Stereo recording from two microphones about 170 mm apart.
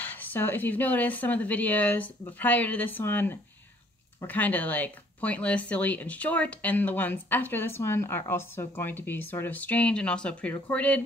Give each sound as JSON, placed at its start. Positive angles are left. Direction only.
{"t": 0.0, "sound": "speech", "side_deg": 10}